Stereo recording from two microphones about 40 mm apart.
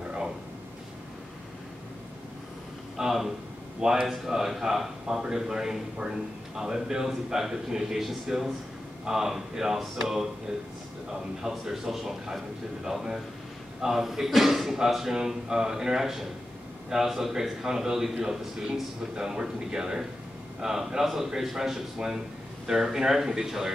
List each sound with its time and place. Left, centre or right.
3.0 s a man's voice: centre
11.4 s a man's voice: centre